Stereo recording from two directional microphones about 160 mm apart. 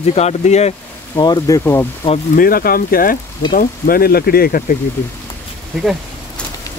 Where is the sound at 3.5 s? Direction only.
65° left (ahead or behind).